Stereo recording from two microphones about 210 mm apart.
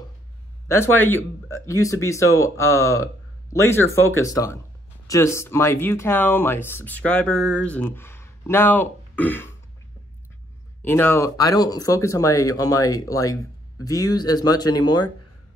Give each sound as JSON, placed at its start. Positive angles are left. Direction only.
{"t": 0.7, "sound": "speech", "side_deg": 10}
{"t": 10.8, "sound": "speech", "side_deg": 10}